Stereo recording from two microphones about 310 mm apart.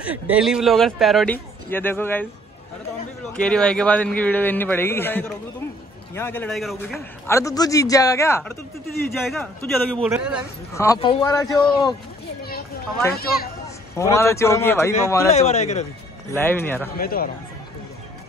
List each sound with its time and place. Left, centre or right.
0.0 s speech: centre
3.3 s a man's voice: centre
10.7 s a man's voice: centre
13.9 s a man's voice: centre
15.3 s speech: left
16.3 s a man's voice: centre
17.0 s speech: left